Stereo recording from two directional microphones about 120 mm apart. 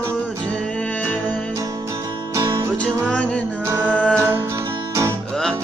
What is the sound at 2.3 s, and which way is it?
Music, 25° right (ahead or behind).